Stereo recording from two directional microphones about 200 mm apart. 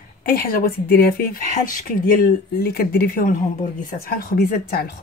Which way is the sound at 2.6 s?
50° left (ahead or behind).